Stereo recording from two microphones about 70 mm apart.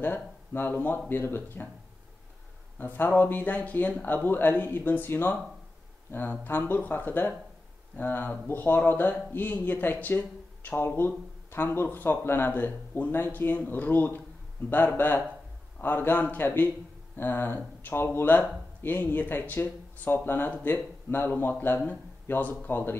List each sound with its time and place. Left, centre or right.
0.0 s speech: left
2.8 s speech: left
6.4 s speech: left